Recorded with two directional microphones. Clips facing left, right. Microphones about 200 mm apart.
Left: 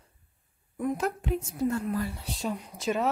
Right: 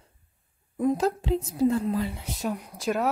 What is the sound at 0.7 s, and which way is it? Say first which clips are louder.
A woman's voice: right 5 dB; 30° right (ahead or behind).